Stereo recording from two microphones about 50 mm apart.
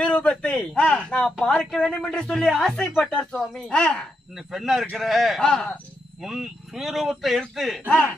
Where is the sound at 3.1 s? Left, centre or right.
Centre.